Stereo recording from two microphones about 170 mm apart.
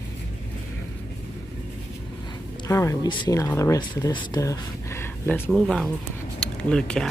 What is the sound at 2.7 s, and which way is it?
Speech, 15° left (ahead or behind).